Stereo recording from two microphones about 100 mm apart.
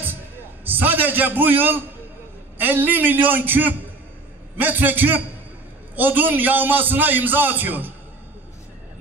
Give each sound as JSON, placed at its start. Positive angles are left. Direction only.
{"t": 0.7, "sound": "a man's voice", "side_deg": -20}